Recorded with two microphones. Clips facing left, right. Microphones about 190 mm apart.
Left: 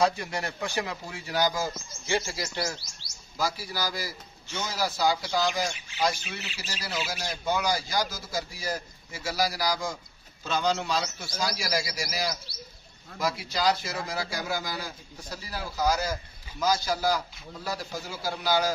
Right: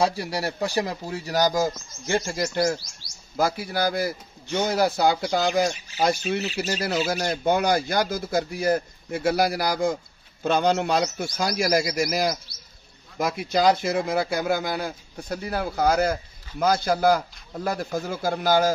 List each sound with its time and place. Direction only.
0.1 s a man's voice: 35° right (ahead or behind); by 5.7 s 60° right (ahead or behind)
5.7 s a man's voice: 40° right (ahead or behind)
13.4 s a man's voice: 55° right (ahead or behind)